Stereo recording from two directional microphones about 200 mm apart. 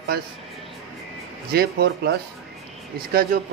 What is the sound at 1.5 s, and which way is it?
Speech, 50° right (ahead or behind).